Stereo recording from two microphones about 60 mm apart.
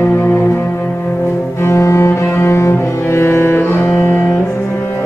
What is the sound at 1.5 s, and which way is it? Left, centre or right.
Cello, left.